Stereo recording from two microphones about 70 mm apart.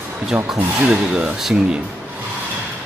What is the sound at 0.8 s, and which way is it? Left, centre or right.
Speech, centre.